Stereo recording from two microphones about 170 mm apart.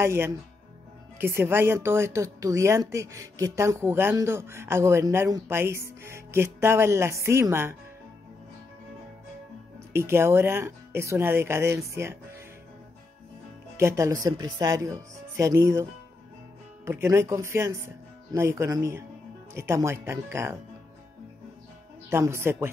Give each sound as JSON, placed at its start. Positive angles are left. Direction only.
{"t": 0.0, "sound": "speech", "side_deg": -15}
{"t": 9.9, "sound": "speech", "side_deg": -15}
{"t": 13.7, "sound": "speech", "side_deg": -15}
{"t": 22.1, "sound": "speech", "side_deg": -15}